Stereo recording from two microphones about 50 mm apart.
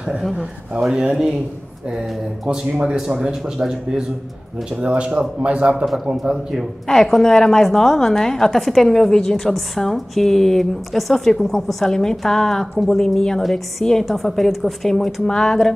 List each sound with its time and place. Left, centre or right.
0.4 s a man's voice: centre
6.3 s a woman's voice: centre